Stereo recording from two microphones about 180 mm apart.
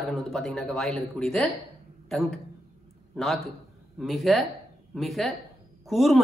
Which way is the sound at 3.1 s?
Centre (ahead or behind).